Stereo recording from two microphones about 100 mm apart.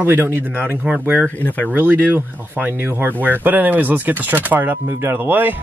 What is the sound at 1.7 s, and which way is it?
Speech, 15° right (ahead or behind).